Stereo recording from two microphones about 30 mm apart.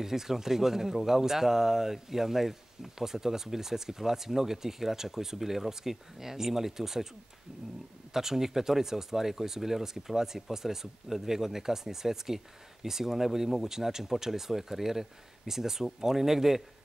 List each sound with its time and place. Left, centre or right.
0.0 s speech: centre
8.1 s speech: centre